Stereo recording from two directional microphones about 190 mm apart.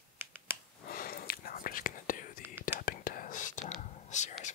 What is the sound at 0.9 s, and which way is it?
Whispering, 50° left (ahead or behind).